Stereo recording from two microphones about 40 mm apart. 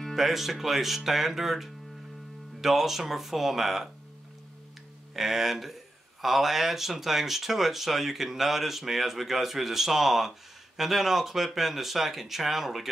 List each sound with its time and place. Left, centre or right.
0.1 s speech: centre
5.1 s speech: centre